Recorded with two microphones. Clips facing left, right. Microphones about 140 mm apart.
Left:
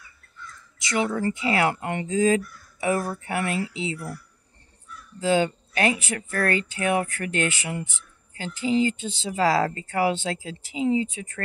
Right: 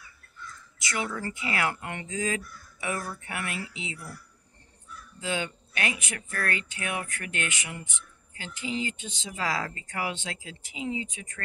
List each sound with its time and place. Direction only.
0.7 s speech: 25° left (ahead or behind)
5.2 s speech: 35° left (ahead or behind)